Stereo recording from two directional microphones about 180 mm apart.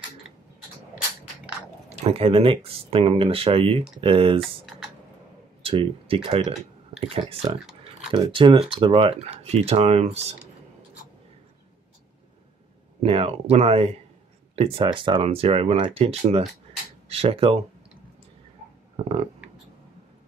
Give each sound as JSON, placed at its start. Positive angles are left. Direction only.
{"t": 2.0, "sound": "speech", "side_deg": -30}
{"t": 4.4, "sound": "typing", "side_deg": 0}
{"t": 5.6, "sound": "speech", "side_deg": -30}
{"t": 13.0, "sound": "speech", "side_deg": -30}